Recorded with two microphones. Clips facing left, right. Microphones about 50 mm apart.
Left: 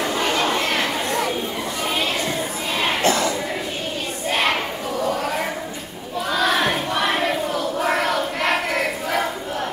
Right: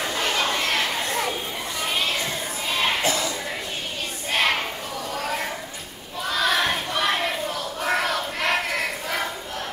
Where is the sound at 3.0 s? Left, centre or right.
Left.